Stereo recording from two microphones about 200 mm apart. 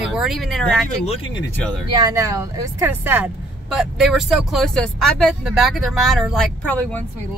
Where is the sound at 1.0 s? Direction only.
30° left (ahead or behind).